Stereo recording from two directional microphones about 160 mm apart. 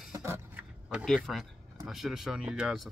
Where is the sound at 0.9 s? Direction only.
Centre (ahead or behind).